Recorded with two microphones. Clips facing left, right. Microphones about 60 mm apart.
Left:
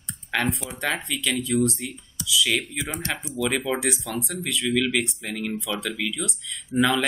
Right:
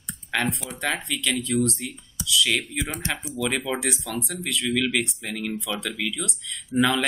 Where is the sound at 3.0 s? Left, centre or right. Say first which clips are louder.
Even; right.